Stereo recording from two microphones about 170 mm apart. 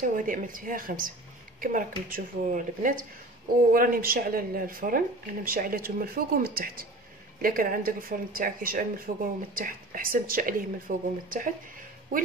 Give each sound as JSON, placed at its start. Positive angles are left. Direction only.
{"t": 0.2, "sound": "speech", "side_deg": -50}